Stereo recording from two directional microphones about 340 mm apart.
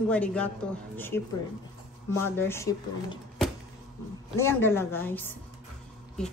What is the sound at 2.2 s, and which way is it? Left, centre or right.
Speech, centre.